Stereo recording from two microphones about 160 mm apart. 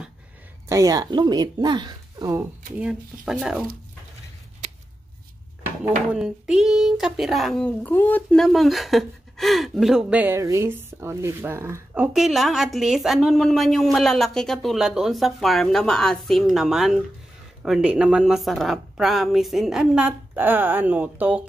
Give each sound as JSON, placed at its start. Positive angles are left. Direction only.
{"t": 0.7, "sound": "speech", "side_deg": -20}
{"t": 2.8, "sound": "speech", "side_deg": -5}
{"t": 6.1, "sound": "speech", "side_deg": -5}